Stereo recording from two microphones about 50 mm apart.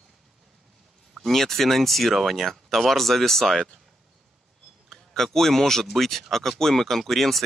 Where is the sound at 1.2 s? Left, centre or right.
Centre.